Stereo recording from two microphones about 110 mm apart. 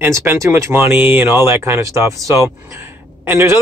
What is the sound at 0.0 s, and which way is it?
Speech, 20° right (ahead or behind).